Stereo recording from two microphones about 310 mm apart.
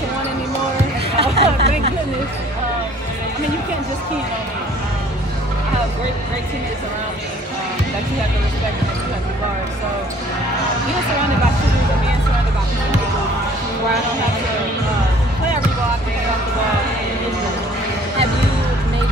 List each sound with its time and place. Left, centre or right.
1.1 s hubbub: centre